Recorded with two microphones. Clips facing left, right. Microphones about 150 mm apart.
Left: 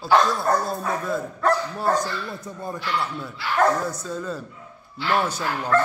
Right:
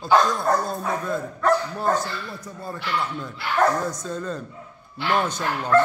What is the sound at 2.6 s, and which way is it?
Speech, 20° left (ahead or behind).